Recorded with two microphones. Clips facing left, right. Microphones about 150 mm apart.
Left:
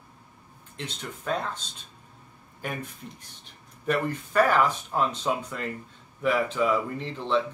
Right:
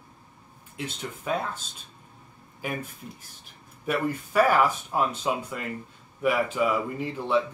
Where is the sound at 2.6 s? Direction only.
5° right (ahead or behind).